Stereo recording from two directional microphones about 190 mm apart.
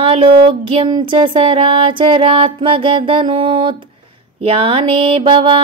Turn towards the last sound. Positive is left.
turn(degrees=-25)  # may be behind; listen again after turning